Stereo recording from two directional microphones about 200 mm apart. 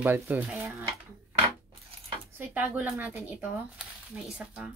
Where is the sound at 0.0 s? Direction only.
10° right (ahead or behind).